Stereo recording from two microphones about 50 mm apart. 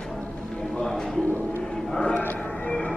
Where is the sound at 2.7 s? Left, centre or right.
Left.